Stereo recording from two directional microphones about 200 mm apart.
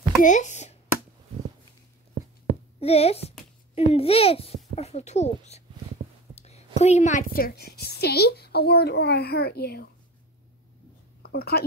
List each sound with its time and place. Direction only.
0.2 s a sound: 40° left (ahead or behind)
2.8 s a child's voice: 30° left (ahead or behind); by 9.8 s 55° left (ahead or behind)
11.2 s speech: 50° left (ahead or behind)